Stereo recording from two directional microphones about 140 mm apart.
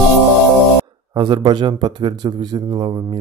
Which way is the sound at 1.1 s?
35° right (ahead or behind).